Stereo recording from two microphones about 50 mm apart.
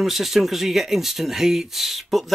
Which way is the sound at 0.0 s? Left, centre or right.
Centre.